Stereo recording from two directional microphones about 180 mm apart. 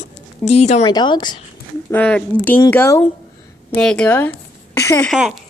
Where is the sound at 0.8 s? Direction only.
25° left (ahead or behind).